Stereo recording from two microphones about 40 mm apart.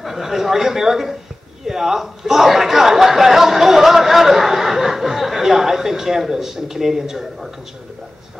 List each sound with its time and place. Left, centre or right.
0.0 s speech: centre